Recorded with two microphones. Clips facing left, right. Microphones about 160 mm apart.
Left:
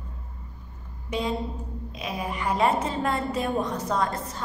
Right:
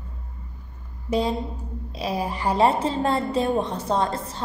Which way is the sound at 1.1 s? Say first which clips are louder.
Right 4 dB; 35° right (ahead or behind).